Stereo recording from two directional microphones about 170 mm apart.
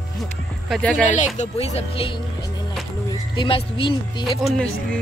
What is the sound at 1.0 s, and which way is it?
Speech, 45° left (ahead or behind).